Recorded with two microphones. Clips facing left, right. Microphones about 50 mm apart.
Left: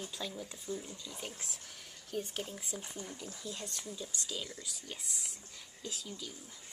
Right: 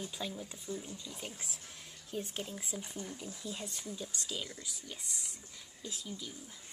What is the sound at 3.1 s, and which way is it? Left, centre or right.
Speech, centre.